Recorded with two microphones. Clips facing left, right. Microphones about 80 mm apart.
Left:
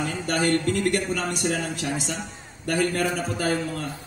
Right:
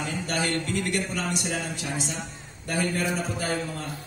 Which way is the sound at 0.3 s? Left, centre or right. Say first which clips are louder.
Left 6 dB; left.